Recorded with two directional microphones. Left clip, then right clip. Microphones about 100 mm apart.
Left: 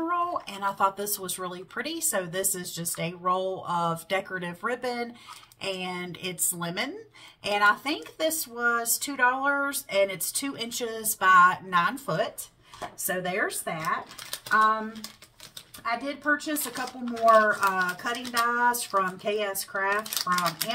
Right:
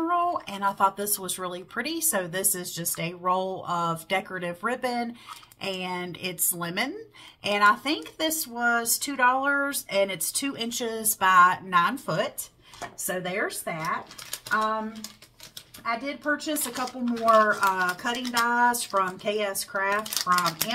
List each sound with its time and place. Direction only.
0.1 s speech: 40° right (ahead or behind)
13.0 s speech: 15° right (ahead or behind)
15.8 s speech: 10° right (ahead or behind)
17.5 s speech: 30° right (ahead or behind)